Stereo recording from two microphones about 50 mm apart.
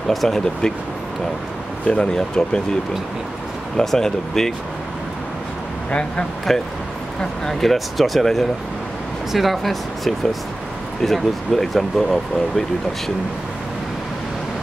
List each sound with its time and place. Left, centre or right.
0.1 s speech: centre
1.9 s speech: centre
3.7 s speech: centre
5.9 s speech: left
6.5 s speech: centre